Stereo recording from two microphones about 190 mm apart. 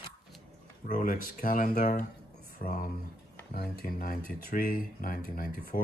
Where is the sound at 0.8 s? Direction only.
45° left (ahead or behind).